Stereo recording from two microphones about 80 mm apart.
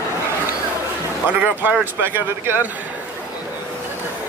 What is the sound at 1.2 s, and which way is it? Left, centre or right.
Speech, centre.